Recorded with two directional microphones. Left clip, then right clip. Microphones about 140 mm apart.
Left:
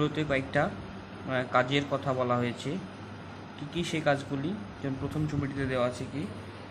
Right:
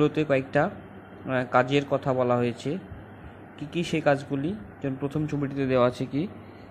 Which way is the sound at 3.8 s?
35° right (ahead or behind).